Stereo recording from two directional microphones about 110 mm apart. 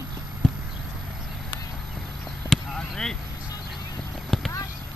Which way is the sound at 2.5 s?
5° left (ahead or behind).